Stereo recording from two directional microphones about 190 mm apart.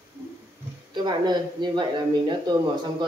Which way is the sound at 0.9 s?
20° right (ahead or behind).